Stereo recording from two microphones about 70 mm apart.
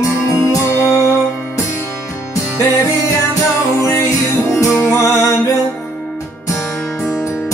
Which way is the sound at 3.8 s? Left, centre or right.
Left.